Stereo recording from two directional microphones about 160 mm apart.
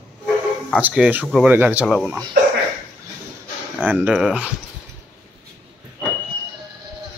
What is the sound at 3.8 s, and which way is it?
Speech, 10° right (ahead or behind).